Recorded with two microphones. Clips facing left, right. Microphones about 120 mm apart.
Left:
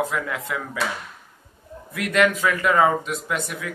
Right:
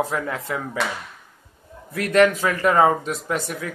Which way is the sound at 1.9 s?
35° right (ahead or behind).